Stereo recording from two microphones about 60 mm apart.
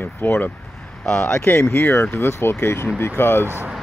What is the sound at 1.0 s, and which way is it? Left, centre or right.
Speech, centre.